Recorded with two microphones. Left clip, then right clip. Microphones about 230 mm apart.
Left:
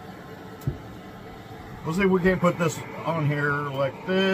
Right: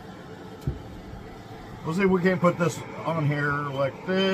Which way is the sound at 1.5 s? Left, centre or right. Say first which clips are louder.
Left 1 dB; centre.